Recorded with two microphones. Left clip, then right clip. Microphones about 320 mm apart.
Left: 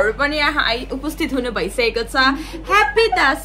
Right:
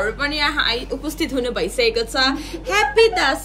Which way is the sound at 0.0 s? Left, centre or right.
Centre.